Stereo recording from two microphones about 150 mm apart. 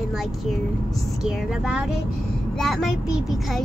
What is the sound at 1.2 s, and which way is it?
A child's voice, 5° right (ahead or behind).